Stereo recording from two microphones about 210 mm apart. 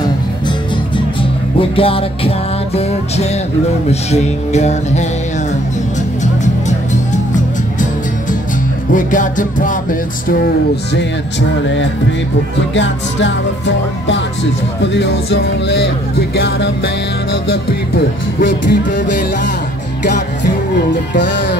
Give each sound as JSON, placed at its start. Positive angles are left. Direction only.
{"t": 1.6, "sound": "music", "side_deg": 25}
{"t": 8.9, "sound": "music", "side_deg": 40}
{"t": 11.6, "sound": "music", "side_deg": 60}
{"t": 18.4, "sound": "music", "side_deg": 55}
{"t": 21.1, "sound": "music", "side_deg": 60}